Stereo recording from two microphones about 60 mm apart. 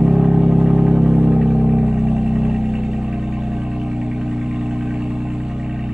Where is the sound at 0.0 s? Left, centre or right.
Centre.